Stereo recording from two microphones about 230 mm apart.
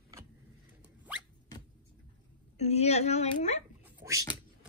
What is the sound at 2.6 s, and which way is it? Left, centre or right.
A woman's voice, left.